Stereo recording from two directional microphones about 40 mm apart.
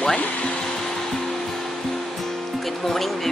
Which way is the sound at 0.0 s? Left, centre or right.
Centre.